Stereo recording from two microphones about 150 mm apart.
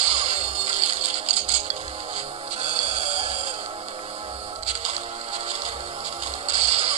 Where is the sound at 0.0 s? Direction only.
45° right (ahead or behind).